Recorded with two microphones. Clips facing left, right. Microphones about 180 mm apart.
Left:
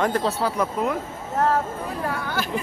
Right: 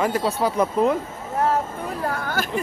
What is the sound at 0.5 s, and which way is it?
Speech, 25° right (ahead or behind).